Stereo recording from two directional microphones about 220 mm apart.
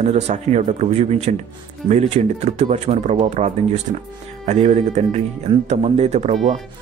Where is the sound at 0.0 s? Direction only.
30° right (ahead or behind).